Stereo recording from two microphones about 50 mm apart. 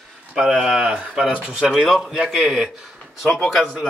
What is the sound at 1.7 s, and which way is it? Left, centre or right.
Speech, centre.